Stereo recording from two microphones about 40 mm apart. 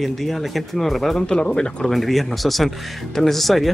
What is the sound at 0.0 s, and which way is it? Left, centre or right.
Speech, centre.